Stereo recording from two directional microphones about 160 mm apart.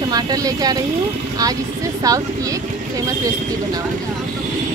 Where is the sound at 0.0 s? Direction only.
25° right (ahead or behind).